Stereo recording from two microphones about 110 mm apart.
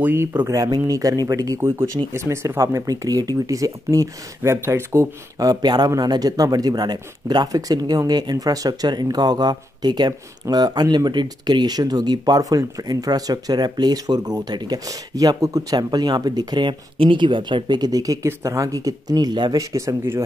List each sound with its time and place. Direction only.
0.0 s speech: 25° right (ahead or behind)
5.5 s speech: 40° right (ahead or behind)